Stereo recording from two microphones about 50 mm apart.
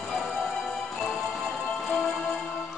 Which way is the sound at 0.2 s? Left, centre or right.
Centre.